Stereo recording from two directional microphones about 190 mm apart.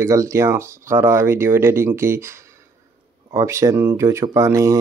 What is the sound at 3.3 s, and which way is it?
Speech, 15° right (ahead or behind).